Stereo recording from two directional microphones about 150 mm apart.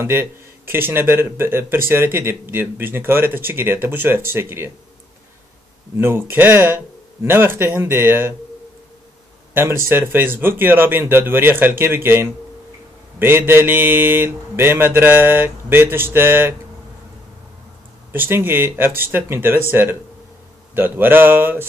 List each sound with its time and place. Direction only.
0.0 s speech: 15° right (ahead or behind)
5.9 s speech: 15° right (ahead or behind)
9.5 s speech: 15° right (ahead or behind)
18.1 s speech: 15° right (ahead or behind)